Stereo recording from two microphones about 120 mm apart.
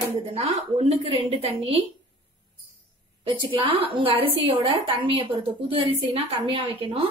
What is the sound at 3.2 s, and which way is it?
A woman's voice, 45° right (ahead or behind).